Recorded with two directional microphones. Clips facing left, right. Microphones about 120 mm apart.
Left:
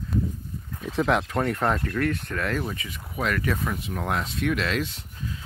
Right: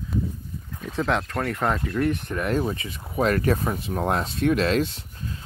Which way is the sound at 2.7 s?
30° right (ahead or behind).